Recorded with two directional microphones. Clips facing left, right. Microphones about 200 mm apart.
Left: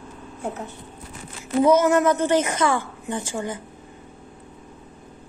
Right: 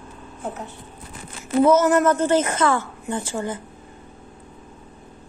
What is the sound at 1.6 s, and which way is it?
A woman's voice, 15° left (ahead or behind).